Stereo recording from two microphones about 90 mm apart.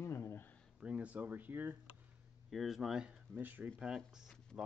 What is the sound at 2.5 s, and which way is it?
Speech, centre (ahead or behind).